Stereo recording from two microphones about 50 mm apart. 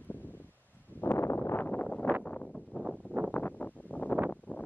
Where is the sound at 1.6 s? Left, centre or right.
Left.